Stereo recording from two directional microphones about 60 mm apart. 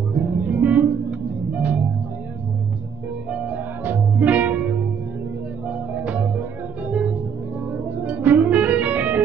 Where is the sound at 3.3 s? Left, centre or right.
Right.